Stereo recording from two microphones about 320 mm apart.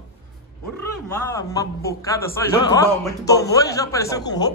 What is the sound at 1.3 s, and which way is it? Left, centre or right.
A man's voice, centre.